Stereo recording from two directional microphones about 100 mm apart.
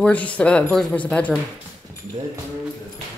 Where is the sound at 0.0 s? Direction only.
15° left (ahead or behind).